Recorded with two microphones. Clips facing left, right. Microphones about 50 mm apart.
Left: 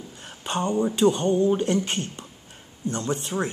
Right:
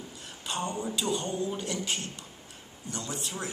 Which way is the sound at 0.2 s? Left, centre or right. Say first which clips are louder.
Left 7 dB; left.